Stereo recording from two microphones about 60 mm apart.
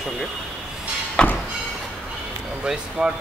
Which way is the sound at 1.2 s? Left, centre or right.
Centre.